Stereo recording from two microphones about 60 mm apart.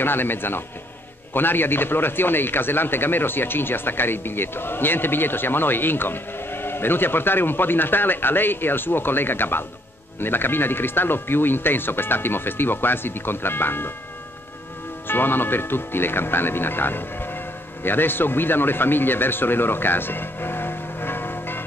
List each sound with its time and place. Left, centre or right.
0.0 s a man's voice: left
15.0 s a man's voice: left